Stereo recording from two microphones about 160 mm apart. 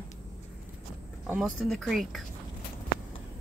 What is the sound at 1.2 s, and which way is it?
Speech, 5° right (ahead or behind).